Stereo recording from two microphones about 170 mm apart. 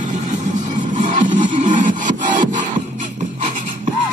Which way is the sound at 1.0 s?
50° right (ahead or behind).